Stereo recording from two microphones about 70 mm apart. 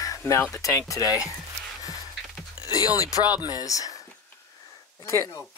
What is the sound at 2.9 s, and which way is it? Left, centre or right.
Speech, left.